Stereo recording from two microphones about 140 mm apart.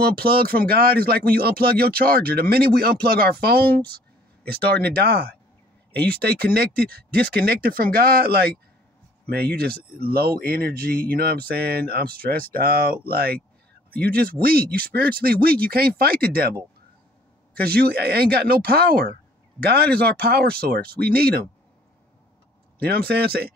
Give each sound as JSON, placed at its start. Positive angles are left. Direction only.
{"t": 0.0, "sound": "speech", "side_deg": -90}
{"t": 5.9, "sound": "speech", "side_deg": 10}
{"t": 6.4, "sound": "speech", "side_deg": -90}
{"t": 17.6, "sound": "speech", "side_deg": -90}
{"t": 20.2, "sound": "speech", "side_deg": -90}
{"t": 22.8, "sound": "speech", "side_deg": -90}